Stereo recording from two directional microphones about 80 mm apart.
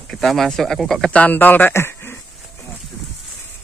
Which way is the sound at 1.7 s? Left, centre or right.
Left.